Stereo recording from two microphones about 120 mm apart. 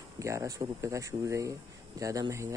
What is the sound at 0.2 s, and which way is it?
Speech, 25° right (ahead or behind).